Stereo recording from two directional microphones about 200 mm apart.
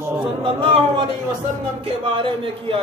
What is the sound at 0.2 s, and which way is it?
Speech, 25° right (ahead or behind).